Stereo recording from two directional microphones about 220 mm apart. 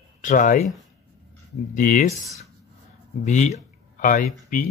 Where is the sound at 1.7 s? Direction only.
35° left (ahead or behind).